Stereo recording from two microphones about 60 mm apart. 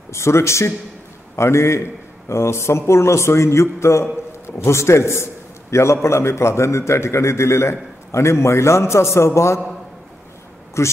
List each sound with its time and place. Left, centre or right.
0.1 s a man's voice: left
10.8 s a man's voice: left